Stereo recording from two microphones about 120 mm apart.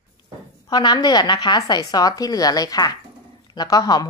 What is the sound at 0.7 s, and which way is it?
Speech, 35° left (ahead or behind).